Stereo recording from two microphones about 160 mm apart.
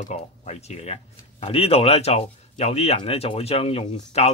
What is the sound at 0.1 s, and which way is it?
Speech, 45° left (ahead or behind).